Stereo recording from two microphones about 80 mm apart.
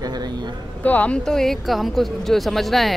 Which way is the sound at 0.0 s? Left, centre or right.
Right.